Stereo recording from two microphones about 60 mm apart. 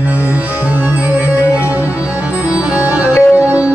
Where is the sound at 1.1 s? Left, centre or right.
Right.